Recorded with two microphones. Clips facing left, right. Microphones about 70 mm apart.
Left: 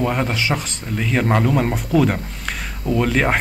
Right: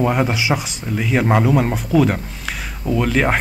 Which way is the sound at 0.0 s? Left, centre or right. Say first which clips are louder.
Right 3 dB; centre.